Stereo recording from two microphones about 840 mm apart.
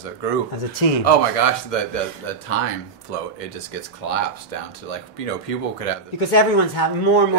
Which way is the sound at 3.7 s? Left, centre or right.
Left.